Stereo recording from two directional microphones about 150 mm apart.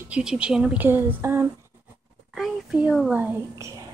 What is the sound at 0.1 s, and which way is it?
Speech, 5° right (ahead or behind).